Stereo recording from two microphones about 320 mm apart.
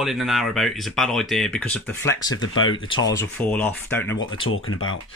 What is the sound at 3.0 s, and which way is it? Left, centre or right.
Speech, centre.